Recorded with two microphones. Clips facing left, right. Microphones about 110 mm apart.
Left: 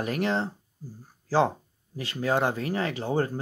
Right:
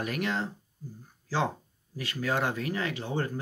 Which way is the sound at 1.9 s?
30° left (ahead or behind).